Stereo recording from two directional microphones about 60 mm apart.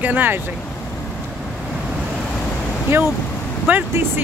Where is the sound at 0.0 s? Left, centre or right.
Right.